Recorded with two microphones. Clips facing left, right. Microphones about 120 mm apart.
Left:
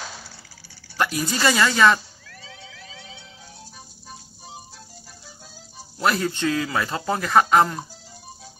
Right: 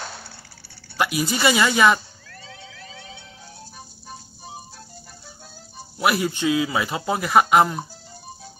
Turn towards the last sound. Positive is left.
turn(degrees=-10)  # may be behind; listen again after turning